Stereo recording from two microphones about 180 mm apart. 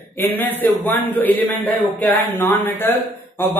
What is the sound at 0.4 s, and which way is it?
Speech, 10° left (ahead or behind).